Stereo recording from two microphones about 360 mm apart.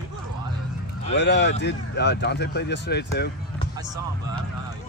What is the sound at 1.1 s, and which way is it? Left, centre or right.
Speech, left.